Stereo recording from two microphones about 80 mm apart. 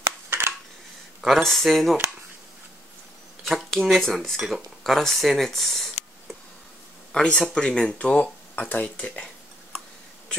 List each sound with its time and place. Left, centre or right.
0.3 s a sound: right
1.2 s speech: centre
3.4 s speech: centre